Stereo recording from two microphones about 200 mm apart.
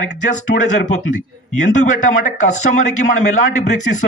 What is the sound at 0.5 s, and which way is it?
Speech, 55° left (ahead or behind).